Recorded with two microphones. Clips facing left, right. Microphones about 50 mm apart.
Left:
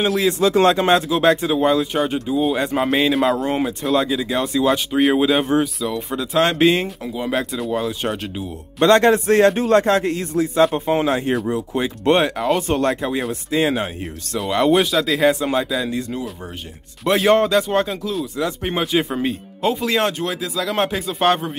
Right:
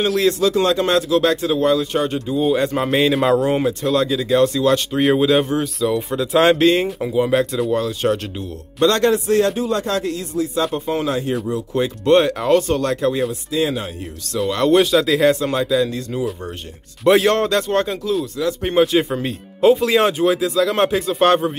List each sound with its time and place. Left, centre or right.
0.3 s speech: left
2.0 s speech: centre
7.0 s speech: centre
7.2 s speech: centre
8.8 s speech: left
12.2 s speech: centre
12.6 s speech: left
13.5 s speech: left
14.5 s speech: centre
14.8 s speech: centre
16.1 s speech: centre